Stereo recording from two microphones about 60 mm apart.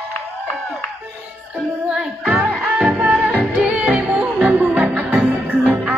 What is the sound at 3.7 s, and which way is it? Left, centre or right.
Music, right.